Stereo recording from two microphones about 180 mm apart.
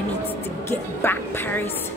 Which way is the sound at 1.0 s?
10° left (ahead or behind).